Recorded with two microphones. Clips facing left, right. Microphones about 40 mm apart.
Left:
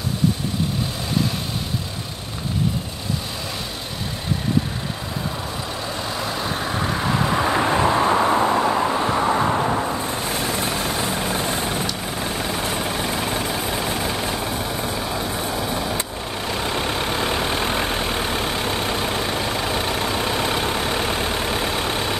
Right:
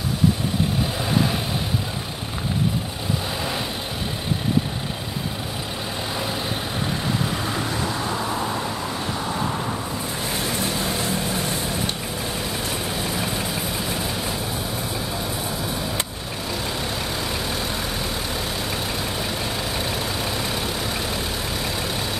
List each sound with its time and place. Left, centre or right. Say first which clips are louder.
6.8 s vehicle: left 4 dB; left
8.8 s vehicle: left 7 dB; left
17.2 s vehicle: left 5 dB; left
20.2 s vehicle: left 4 dB; left